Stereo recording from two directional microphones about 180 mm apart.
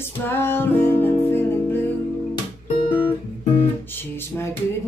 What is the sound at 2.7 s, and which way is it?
Guitar, 30° left (ahead or behind).